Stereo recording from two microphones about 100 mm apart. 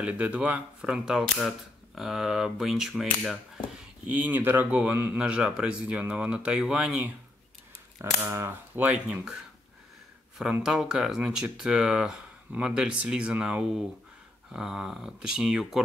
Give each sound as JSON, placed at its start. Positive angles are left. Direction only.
{"t": 0.0, "sound": "speech", "side_deg": -15}
{"t": 4.1, "sound": "speech", "side_deg": -15}
{"t": 8.0, "sound": "speech", "side_deg": -30}
{"t": 8.7, "sound": "speech", "side_deg": -15}
{"t": 10.6, "sound": "speech", "side_deg": -5}